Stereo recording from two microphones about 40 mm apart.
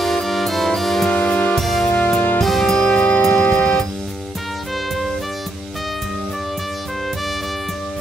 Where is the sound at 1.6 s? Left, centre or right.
Centre.